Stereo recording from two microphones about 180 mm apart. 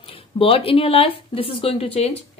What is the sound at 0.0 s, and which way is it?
Speech, 30° left (ahead or behind).